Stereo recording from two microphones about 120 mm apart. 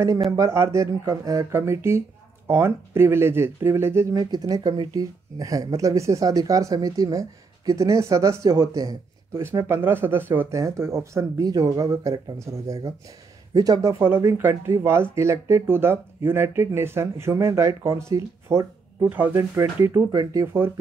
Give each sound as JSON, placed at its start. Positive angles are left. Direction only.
{"t": 0.4, "sound": "speech", "side_deg": -25}
{"t": 14.0, "sound": "speech", "side_deg": -15}